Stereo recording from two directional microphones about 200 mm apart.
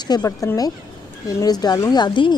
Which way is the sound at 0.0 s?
20° left (ahead or behind).